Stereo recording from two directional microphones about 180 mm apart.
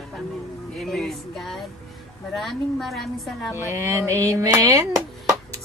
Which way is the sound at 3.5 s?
15° right (ahead or behind).